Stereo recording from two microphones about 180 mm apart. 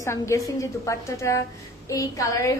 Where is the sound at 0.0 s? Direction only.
15° left (ahead or behind).